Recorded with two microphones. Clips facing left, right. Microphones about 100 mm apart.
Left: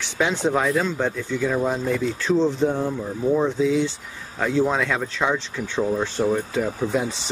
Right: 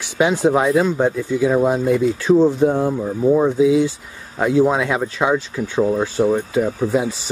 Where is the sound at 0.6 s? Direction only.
25° right (ahead or behind).